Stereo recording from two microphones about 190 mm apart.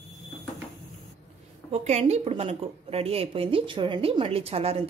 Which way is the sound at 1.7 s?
35° right (ahead or behind).